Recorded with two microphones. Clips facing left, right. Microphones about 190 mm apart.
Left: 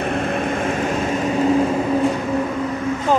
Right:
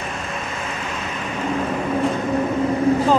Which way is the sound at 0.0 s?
55° left (ahead or behind).